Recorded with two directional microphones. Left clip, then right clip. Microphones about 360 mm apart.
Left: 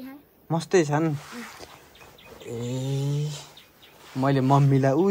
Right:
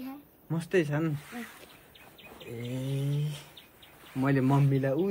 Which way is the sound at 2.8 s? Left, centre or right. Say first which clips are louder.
Left 5 dB; centre.